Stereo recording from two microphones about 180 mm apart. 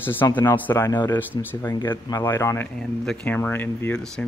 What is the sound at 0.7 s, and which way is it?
Speech, 20° left (ahead or behind).